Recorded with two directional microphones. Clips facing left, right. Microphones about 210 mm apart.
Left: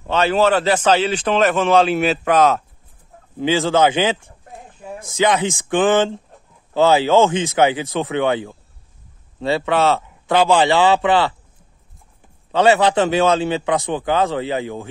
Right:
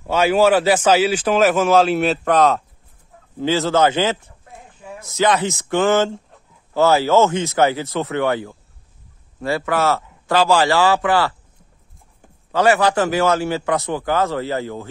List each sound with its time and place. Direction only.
0.0 s a man's voice: 10° right (ahead or behind)
3.3 s speech: 15° left (ahead or behind)
9.6 s a man's voice: 20° left (ahead or behind)
12.4 s a man's voice: 20° left (ahead or behind)